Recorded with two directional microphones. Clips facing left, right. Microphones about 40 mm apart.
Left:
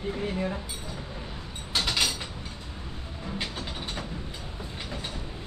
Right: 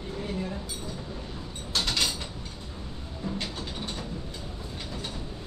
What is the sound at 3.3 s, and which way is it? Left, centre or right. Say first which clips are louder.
Music: left 4 dB; centre.